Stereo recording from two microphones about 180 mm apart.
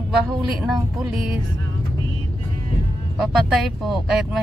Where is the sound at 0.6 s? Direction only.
5° right (ahead or behind).